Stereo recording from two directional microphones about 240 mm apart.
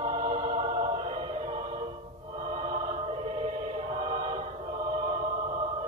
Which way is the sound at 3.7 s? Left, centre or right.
Right.